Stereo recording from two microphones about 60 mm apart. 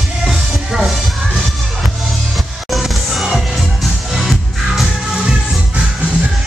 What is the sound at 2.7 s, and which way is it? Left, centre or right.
Music, centre.